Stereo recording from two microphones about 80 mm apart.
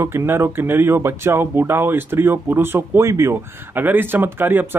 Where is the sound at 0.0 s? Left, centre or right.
Right.